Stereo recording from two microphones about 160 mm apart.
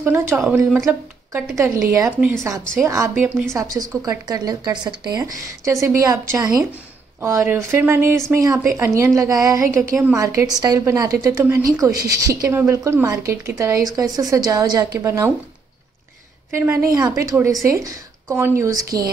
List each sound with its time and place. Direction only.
0.0 s a woman's voice: 15° right (ahead or behind)
16.5 s a woman's voice: 15° right (ahead or behind)